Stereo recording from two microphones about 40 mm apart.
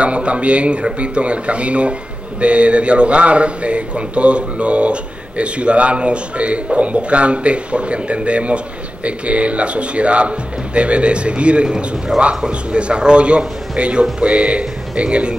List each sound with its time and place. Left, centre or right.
0.0 s speech: right
12.1 s a man's voice: centre
12.4 s speech: right